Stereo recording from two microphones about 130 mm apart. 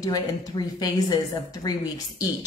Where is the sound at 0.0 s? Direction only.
30° left (ahead or behind).